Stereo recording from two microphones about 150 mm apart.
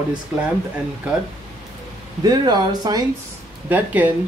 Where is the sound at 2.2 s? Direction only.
30° right (ahead or behind).